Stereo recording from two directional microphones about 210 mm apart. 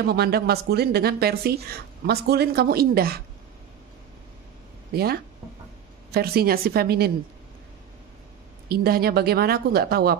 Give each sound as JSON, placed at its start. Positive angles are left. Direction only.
{"t": 0.0, "sound": "speech", "side_deg": -50}
{"t": 4.9, "sound": "speech", "side_deg": -50}
{"t": 8.6, "sound": "speech", "side_deg": -45}